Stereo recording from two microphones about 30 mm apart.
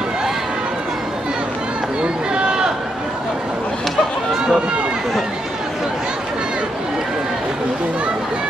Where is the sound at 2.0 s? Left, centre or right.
Right.